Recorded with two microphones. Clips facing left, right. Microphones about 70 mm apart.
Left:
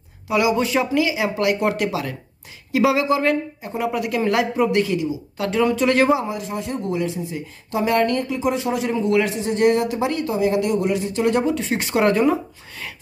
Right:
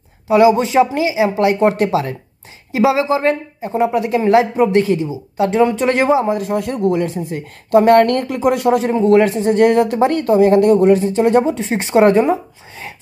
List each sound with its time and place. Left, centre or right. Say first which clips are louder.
0.3 s speech: right 7 dB; right
6.2 s speech: right 8 dB; right
8.8 s speech: right 6 dB; right